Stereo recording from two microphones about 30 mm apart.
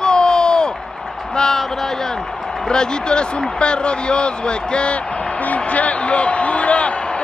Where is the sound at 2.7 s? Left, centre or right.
Left.